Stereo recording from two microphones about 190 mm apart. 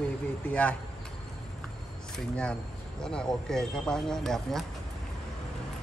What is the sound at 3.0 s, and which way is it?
Speech, 5° left (ahead or behind).